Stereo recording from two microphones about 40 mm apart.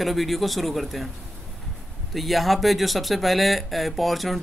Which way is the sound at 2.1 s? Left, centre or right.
Centre.